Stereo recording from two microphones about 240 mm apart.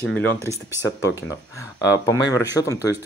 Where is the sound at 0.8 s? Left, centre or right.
Centre.